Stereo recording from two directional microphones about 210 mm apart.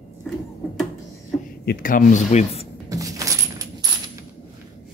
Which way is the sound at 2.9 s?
15° right (ahead or behind).